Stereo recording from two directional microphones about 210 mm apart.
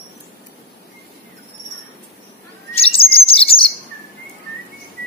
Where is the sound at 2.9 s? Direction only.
25° left (ahead or behind).